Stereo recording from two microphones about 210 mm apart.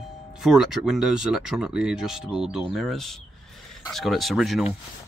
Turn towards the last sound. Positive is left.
turn(degrees=0)  # may be behind; listen again after turning